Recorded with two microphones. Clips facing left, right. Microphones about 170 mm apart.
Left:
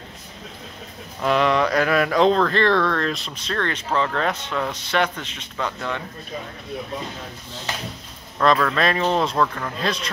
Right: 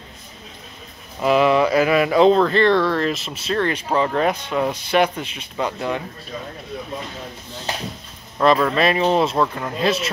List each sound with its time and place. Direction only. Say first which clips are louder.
1.2 s speech: right 3 dB; 5° right (ahead or behind)
8.4 s speech: right 3 dB; 10° right (ahead or behind)